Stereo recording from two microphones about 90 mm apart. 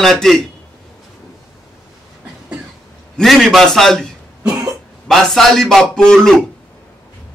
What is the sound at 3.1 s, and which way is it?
Speech, centre (ahead or behind).